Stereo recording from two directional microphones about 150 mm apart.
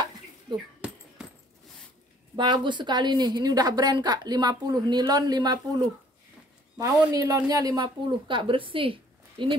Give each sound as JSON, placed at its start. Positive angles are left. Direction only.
{"t": 0.7, "sound": "a sound", "side_deg": -5}
{"t": 2.3, "sound": "a woman's voice", "side_deg": -30}
{"t": 6.8, "sound": "speech", "side_deg": -20}